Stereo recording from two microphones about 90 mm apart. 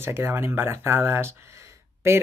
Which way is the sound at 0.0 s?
25° right (ahead or behind).